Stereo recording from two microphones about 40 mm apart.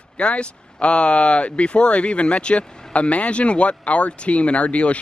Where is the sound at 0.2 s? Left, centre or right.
Left.